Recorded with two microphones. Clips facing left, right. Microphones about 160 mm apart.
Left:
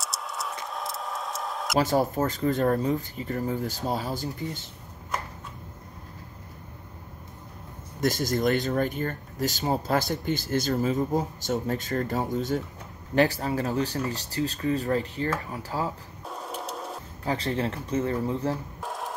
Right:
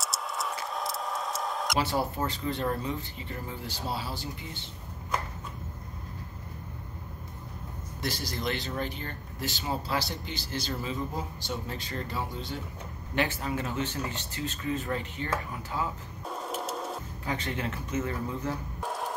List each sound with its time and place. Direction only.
0.0 s tick-tock: centre (ahead or behind)
1.8 s speech: 40° left (ahead or behind)
8.0 s speech: 45° left (ahead or behind)
16.3 s wood: centre (ahead or behind)
17.2 s speech: 35° left (ahead or behind)
18.8 s music: centre (ahead or behind)